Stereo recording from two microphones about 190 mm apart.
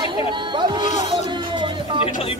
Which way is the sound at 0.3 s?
25° right (ahead or behind).